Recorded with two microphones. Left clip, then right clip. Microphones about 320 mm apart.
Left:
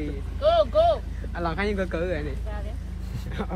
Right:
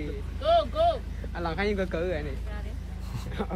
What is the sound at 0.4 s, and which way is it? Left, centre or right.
Vehicle, centre.